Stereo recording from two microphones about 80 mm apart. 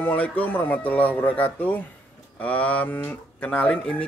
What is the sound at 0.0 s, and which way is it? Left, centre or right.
Speech, left.